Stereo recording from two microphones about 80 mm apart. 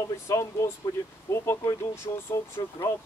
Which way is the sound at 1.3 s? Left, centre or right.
Left.